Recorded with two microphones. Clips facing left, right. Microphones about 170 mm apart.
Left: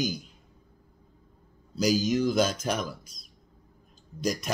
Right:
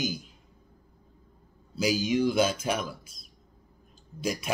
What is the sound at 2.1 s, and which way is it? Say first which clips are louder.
A man's voice: even; 5° right (ahead or behind).